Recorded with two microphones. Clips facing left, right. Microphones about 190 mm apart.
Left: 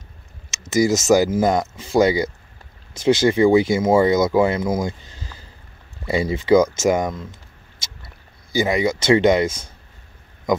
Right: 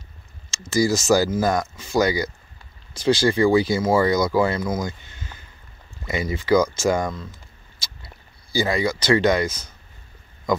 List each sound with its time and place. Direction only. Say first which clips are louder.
0.5 s speech: left 2 dB; 20° left (ahead or behind)
7.8 s a sound: left 1 dB; 20° left (ahead or behind)
8.5 s speech: left 3 dB; 20° left (ahead or behind)